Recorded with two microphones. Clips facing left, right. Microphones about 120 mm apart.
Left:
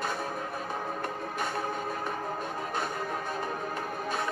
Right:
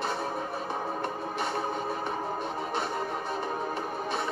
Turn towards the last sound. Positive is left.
turn(degrees=-20)  # may be behind; listen again after turning